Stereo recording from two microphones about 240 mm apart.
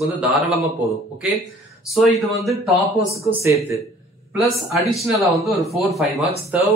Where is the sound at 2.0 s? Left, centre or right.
Centre.